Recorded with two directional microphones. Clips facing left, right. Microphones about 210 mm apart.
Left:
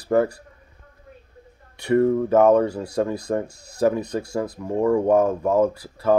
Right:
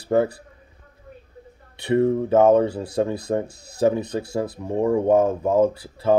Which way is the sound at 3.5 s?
5° right (ahead or behind).